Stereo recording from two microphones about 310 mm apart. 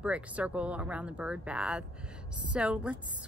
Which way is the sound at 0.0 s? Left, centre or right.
Centre.